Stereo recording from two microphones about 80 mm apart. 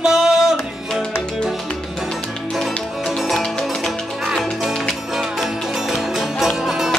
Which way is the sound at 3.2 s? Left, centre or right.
Centre.